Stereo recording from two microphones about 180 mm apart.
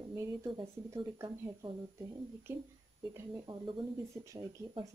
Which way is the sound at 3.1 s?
15° right (ahead or behind).